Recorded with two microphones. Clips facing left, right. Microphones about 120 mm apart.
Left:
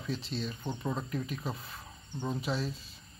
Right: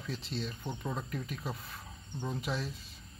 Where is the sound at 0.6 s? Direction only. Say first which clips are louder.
Left 3 dB; 15° left (ahead or behind).